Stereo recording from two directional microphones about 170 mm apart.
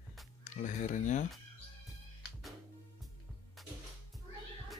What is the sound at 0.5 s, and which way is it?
Speech, 45° left (ahead or behind).